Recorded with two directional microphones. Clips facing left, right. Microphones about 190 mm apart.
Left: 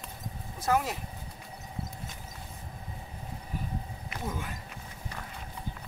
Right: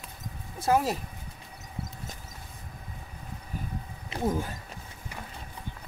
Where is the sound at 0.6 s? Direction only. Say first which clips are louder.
Right 3 dB; 30° right (ahead or behind).